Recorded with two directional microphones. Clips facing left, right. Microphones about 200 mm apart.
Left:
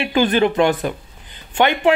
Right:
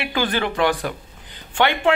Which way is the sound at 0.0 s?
20° left (ahead or behind).